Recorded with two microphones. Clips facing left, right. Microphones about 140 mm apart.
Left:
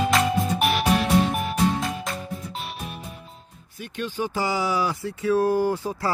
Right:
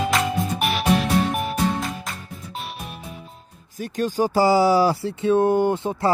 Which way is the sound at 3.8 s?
40° right (ahead or behind).